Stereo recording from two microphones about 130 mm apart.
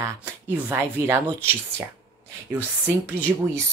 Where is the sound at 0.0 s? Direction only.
20° right (ahead or behind).